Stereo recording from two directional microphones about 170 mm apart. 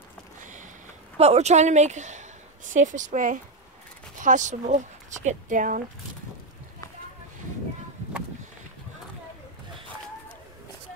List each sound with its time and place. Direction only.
0.4 s boat: 50° right (ahead or behind)
1.1 s speech: 40° right (ahead or behind)